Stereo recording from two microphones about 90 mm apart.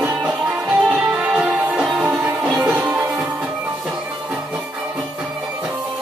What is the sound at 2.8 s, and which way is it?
Music, 15° right (ahead or behind).